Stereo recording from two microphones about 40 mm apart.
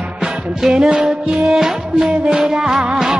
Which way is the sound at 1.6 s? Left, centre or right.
Centre.